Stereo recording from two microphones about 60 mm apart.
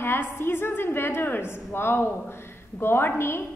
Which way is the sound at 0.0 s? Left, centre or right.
Left.